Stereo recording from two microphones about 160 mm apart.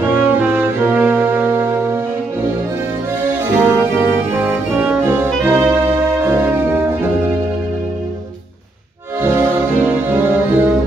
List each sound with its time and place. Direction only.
0.0 s music: 10° right (ahead or behind)
3.5 s brass instrument: 15° right (ahead or behind)
9.2 s music: 15° right (ahead or behind)